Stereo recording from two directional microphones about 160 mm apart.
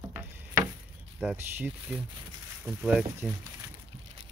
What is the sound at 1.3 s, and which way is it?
Speech, 15° right (ahead or behind).